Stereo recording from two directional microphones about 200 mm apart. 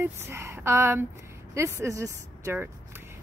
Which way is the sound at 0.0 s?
15° right (ahead or behind).